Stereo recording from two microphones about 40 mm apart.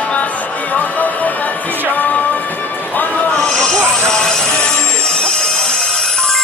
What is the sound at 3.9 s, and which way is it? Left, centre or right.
Train, centre.